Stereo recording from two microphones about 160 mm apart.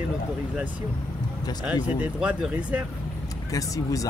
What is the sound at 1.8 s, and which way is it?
Speech, 10° right (ahead or behind).